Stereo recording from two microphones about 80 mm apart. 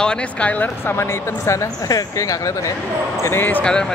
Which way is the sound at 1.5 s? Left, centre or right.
Left.